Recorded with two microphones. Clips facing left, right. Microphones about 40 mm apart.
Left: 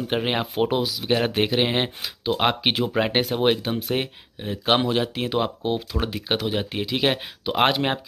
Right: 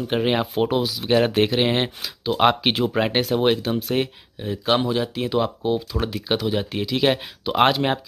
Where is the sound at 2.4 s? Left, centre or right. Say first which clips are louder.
Right 5 dB; centre.